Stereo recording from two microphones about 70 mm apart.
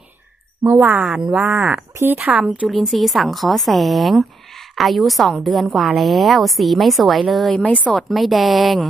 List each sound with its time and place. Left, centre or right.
1.0 s speech: centre
2.0 s speech: right
2.2 s speech: centre
2.7 s speech: centre